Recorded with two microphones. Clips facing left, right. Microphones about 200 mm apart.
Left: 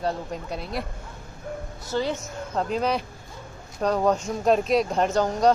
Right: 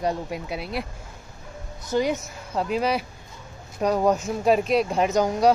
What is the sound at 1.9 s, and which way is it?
Speech, 15° right (ahead or behind).